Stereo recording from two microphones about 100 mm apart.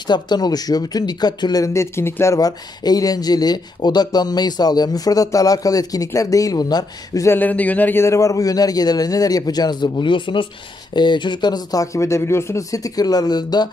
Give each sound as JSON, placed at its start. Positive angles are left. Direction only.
{"t": 0.0, "sound": "speech", "side_deg": 45}
{"t": 7.2, "sound": "speech", "side_deg": 15}